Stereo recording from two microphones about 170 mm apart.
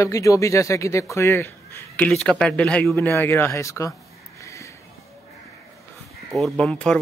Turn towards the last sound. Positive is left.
turn(degrees=5)  # may be behind; listen again after turning